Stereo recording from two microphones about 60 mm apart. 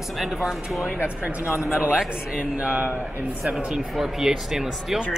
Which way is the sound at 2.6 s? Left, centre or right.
Right.